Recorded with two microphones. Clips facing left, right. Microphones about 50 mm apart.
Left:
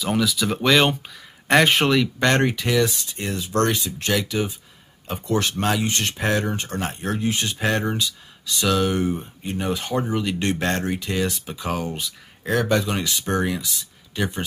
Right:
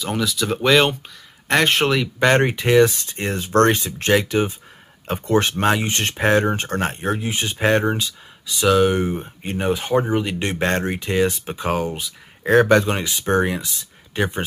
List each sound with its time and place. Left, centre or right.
0.0 s speech: centre
2.3 s speech: right
5.0 s speech: right
5.4 s speech: right
7.2 s speech: centre
8.5 s speech: centre
9.1 s speech: right
9.6 s speech: right
12.6 s speech: right
12.9 s speech: right